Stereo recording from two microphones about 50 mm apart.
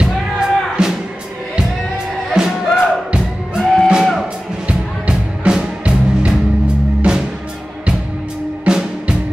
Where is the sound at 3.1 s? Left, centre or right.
Centre.